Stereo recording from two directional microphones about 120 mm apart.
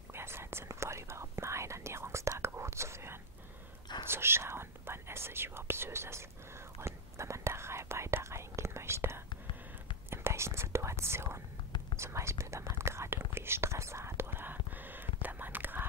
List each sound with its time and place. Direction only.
0.1 s whispering: 20° right (ahead or behind)